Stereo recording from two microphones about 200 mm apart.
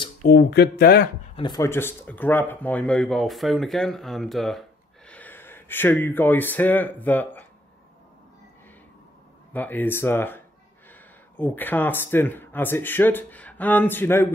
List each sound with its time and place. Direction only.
0.2 s speech: 55° left (ahead or behind)
1.3 s speech: 20° left (ahead or behind)
9.5 s speech: 10° left (ahead or behind)